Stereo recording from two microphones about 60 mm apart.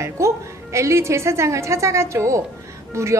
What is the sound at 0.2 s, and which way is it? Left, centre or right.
Music, right.